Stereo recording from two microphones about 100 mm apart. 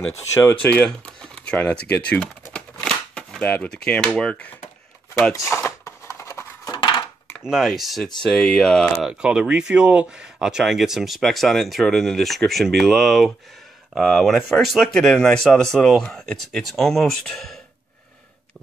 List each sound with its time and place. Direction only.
0.1 s speech: 25° left (ahead or behind)
0.6 s speech: 15° left (ahead or behind)
2.5 s shuffling cards: 5° left (ahead or behind)
5.3 s a sound: 30° left (ahead or behind)
6.8 s dishes: 55° left (ahead or behind)
7.4 s speech: 5° right (ahead or behind)
9.0 s speech: 10° right (ahead or behind)